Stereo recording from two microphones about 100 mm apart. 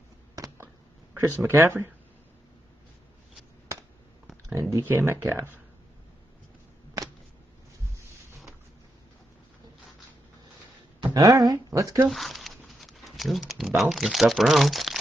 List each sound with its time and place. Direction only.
1.1 s speech: 25° right (ahead or behind)
4.6 s speech: 30° right (ahead or behind)
11.1 s speech: 35° right (ahead or behind)
12.1 s a sound: centre (ahead or behind)
13.7 s speech: 5° right (ahead or behind)